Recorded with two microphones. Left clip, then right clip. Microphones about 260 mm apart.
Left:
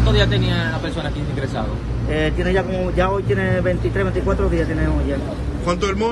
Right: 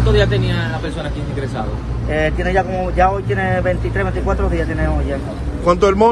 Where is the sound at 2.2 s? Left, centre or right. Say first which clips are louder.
Right 3 dB; centre.